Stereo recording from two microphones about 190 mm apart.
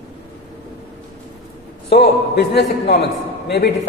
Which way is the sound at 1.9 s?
60° left (ahead or behind).